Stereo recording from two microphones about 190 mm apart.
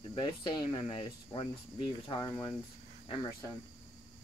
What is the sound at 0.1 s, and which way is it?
Speech, 25° left (ahead or behind).